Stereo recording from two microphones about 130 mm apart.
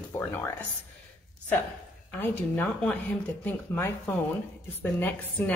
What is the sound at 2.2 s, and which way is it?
Speech, 15° left (ahead or behind).